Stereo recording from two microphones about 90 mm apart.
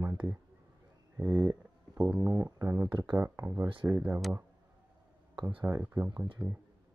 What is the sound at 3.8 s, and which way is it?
Speech, 20° right (ahead or behind).